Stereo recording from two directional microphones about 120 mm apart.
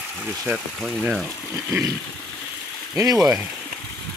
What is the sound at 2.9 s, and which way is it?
Speech, 25° right (ahead or behind).